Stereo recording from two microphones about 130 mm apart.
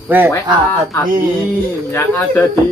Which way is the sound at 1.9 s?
15° left (ahead or behind).